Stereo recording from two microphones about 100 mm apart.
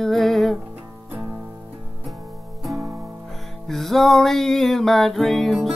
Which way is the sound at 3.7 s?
Centre (ahead or behind).